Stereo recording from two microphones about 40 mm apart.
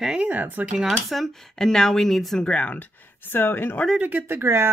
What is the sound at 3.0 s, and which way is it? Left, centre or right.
Speech, left.